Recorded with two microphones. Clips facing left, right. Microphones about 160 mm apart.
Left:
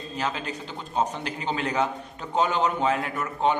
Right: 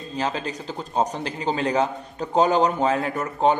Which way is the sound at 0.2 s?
35° right (ahead or behind).